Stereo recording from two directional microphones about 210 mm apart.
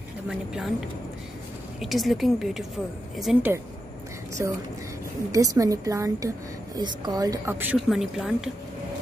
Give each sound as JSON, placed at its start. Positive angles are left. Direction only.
{"t": 0.3, "sound": "a woman's voice", "side_deg": 0}
{"t": 1.8, "sound": "a woman's voice", "side_deg": 0}
{"t": 4.4, "sound": "a woman's voice", "side_deg": -10}